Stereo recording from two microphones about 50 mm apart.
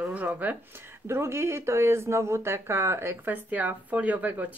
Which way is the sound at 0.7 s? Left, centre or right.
Right.